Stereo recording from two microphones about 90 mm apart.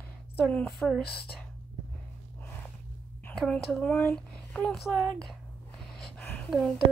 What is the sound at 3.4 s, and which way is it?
Speech, 10° left (ahead or behind).